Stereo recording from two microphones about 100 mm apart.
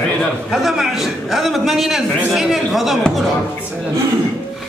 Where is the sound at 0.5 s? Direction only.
5° right (ahead or behind).